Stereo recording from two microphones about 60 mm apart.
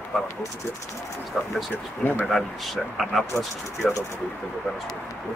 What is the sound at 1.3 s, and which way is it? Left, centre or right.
Speech, centre.